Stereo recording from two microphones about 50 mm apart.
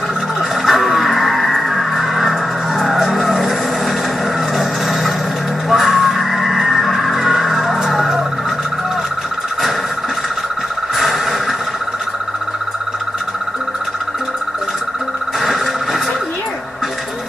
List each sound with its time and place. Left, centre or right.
0.6 s music: centre
2.8 s vehicle: centre
4.6 s vehicle: centre
5.7 s music: centre
11.0 s vehicle: centre
15.4 s a sound: centre